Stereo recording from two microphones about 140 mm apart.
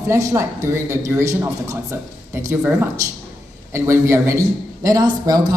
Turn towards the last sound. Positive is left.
turn(degrees=-30)  # may be behind; listen again after turning